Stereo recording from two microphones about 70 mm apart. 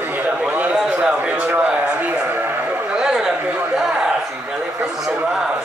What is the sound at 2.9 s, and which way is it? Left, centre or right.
Chatter, centre.